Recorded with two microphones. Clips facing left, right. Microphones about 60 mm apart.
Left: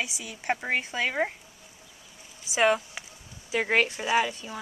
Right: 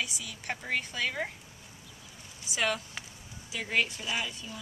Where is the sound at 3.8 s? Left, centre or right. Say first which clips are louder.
Left 7 dB; left.